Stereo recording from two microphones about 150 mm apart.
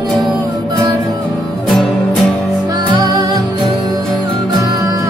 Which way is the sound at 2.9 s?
25° right (ahead or behind).